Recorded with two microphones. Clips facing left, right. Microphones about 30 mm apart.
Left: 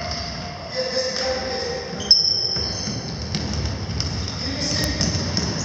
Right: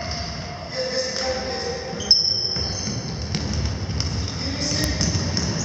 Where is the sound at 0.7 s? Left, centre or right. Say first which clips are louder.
Left 1 dB; centre.